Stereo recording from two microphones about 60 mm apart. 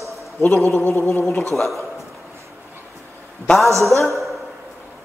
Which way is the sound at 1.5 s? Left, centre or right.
Centre.